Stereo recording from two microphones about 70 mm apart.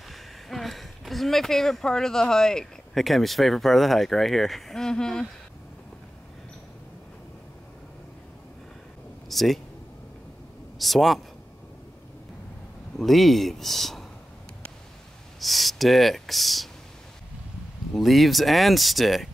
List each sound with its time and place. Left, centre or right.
0.1 s speech: centre
9.3 s a sound: centre
10.8 s speech: centre
12.9 s speech: centre
15.4 s speech: centre
17.9 s speech: centre